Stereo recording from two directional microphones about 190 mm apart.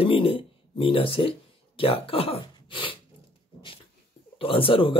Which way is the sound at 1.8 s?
30° left (ahead or behind).